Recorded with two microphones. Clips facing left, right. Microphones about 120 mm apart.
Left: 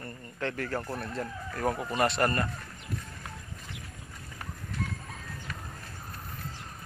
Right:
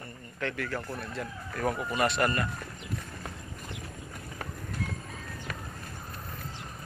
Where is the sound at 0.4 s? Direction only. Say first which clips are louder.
Left 1 dB; 35° left (ahead or behind).